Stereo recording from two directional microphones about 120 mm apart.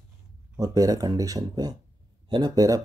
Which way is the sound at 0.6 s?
30° right (ahead or behind).